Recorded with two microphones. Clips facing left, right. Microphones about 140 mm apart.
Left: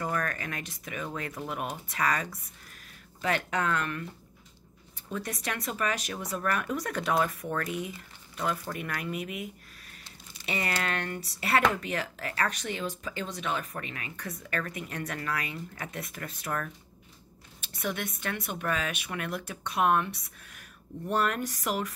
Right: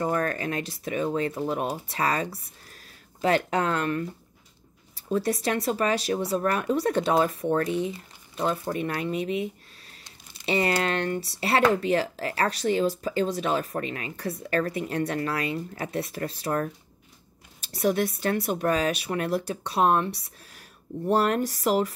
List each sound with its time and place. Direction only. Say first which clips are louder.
0.0 s speech: right 6 dB; 30° right (ahead or behind)